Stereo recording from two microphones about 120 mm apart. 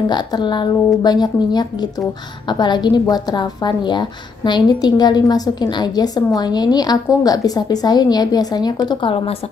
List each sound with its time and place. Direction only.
0.1 s a woman's voice: 40° left (ahead or behind)